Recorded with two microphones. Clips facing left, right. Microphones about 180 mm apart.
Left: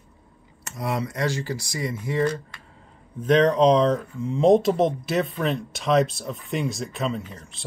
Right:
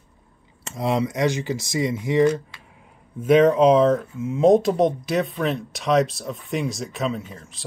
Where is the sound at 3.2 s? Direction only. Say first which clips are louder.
Right 3 dB; 5° right (ahead or behind).